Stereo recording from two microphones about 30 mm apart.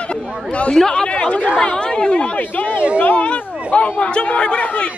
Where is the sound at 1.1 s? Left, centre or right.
Left.